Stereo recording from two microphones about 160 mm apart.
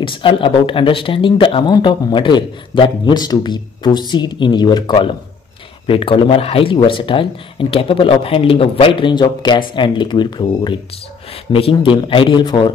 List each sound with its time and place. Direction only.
0.0 s speech: 30° left (ahead or behind)